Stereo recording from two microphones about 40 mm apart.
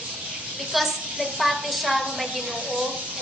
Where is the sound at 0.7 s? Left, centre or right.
Centre.